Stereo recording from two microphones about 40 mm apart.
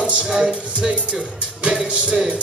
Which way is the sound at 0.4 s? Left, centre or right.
Right.